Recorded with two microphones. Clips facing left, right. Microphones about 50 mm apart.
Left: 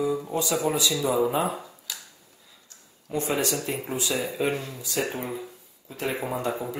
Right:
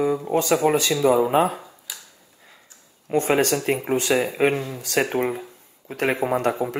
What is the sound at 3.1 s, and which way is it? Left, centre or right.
Speech, right.